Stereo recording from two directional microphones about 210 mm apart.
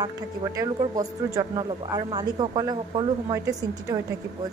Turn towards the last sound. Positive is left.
turn(degrees=-15)  # may be behind; listen again after turning